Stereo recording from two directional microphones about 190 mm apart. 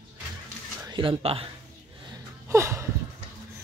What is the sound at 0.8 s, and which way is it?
Speech, 25° right (ahead or behind).